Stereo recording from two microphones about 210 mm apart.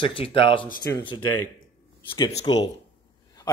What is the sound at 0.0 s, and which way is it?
A man's voice, 25° left (ahead or behind).